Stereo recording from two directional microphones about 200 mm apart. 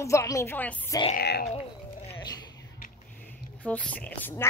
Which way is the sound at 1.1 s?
55° left (ahead or behind).